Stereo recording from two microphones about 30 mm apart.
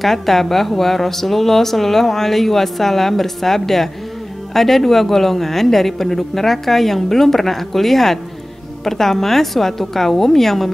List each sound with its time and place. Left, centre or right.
0.0 s speech: centre